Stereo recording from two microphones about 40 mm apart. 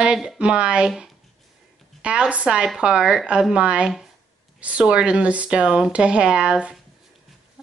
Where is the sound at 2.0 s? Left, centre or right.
Right.